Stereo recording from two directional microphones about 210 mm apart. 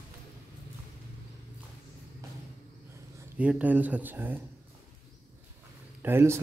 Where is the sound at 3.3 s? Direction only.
5° right (ahead or behind).